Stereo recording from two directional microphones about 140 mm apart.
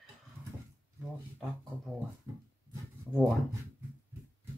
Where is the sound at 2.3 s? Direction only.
20° right (ahead or behind).